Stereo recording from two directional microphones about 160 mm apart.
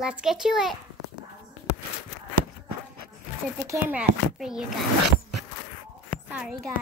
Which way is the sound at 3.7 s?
10° right (ahead or behind).